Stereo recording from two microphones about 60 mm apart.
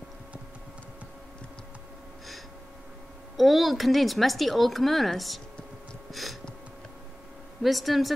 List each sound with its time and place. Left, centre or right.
3.3 s a woman's voice: centre
7.6 s a woman's voice: centre